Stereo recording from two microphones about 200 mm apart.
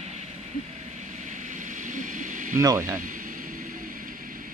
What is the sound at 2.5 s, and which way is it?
Speech, 15° right (ahead or behind).